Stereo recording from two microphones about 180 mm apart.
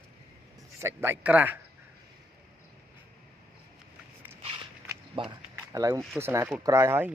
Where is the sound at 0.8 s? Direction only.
15° right (ahead or behind).